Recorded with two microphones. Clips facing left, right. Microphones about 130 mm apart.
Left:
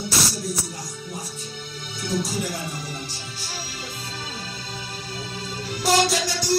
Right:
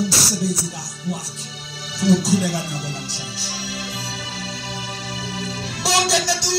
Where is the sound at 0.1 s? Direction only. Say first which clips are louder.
Right 4 dB; 90° right.